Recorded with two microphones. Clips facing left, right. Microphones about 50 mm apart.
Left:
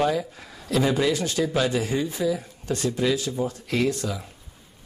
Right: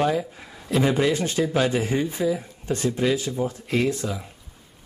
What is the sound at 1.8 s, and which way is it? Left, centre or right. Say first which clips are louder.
Speech: right 1 dB; right.